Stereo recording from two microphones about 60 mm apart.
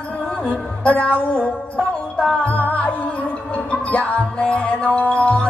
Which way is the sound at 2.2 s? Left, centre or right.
Left.